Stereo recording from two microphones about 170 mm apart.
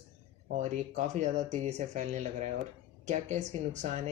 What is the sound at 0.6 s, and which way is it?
Speech, 45° right (ahead or behind).